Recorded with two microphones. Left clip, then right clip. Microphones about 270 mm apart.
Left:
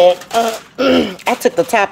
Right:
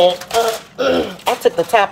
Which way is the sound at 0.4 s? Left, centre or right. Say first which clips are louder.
Left 1 dB; left.